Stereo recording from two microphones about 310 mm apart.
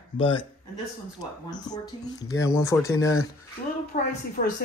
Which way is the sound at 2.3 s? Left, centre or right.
Centre.